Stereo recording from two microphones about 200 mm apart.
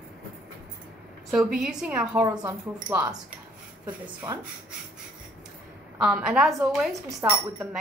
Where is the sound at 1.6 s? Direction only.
5° right (ahead or behind).